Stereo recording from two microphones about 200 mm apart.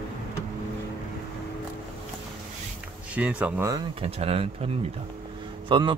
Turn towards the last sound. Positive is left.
turn(degrees=-25)  # may be behind; listen again after turning